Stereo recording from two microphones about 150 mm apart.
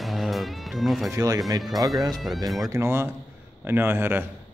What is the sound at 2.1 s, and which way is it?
Speech, centre (ahead or behind).